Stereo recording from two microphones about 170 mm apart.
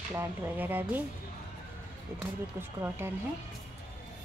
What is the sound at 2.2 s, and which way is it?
Speech, 15° right (ahead or behind).